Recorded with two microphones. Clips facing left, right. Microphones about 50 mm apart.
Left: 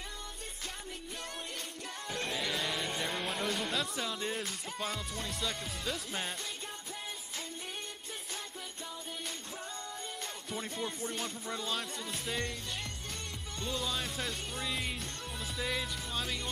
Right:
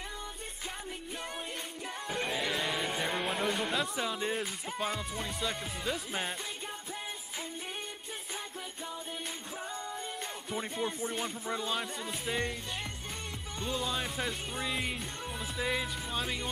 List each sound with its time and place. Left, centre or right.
2.0 s music: centre
10.5 s music: centre
13.6 s music: centre